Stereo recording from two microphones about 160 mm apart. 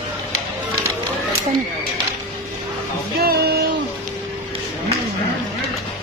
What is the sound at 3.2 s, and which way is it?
Music, 80° right.